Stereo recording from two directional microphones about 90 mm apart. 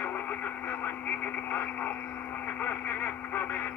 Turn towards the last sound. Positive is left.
turn(degrees=20)  # may be behind; listen again after turning